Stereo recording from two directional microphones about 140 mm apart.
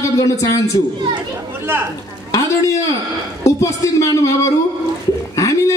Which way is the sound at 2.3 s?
25° left (ahead or behind).